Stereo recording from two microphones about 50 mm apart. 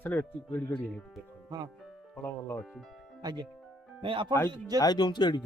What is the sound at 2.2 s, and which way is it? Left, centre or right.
Speech, left.